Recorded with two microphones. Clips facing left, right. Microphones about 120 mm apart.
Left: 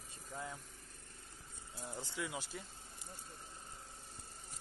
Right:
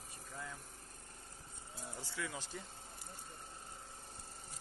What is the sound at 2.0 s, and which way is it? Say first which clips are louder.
Speech: left 1 dB; 20° left (ahead or behind).